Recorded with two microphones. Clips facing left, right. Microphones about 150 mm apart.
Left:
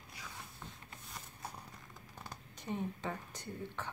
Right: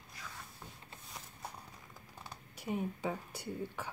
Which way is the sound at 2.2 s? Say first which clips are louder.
Right 2 dB; 10° right (ahead or behind).